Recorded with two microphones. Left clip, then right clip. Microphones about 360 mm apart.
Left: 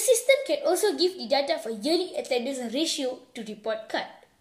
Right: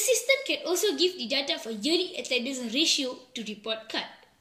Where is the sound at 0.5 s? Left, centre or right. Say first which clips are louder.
Left 3 dB; centre.